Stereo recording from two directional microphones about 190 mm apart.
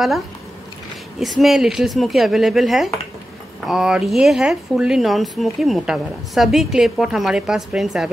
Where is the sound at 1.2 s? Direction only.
Centre (ahead or behind).